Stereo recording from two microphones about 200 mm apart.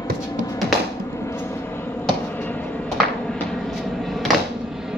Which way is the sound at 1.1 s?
10° left (ahead or behind).